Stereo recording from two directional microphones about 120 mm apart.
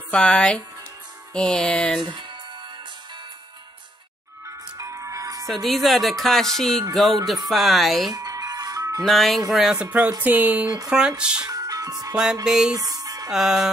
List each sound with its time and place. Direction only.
0.1 s music: 10° left (ahead or behind)
4.7 s music: 25° right (ahead or behind)
5.5 s speech: centre (ahead or behind)
8.1 s music: 30° right (ahead or behind)
9.0 s speech: centre (ahead or behind)
11.4 s music: 30° right (ahead or behind)
12.4 s speech: 5° right (ahead or behind)
12.7 s music: 30° right (ahead or behind)
13.3 s speech: 5° right (ahead or behind)